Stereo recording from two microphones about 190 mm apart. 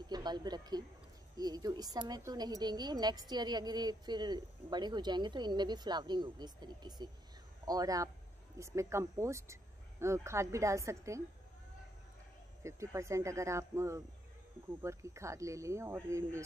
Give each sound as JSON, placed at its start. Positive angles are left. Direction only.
{"t": 0.0, "sound": "a woman's voice", "side_deg": -20}
{"t": 12.6, "sound": "speech", "side_deg": -15}